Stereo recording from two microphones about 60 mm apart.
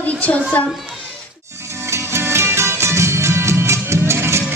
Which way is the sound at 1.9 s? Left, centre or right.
Right.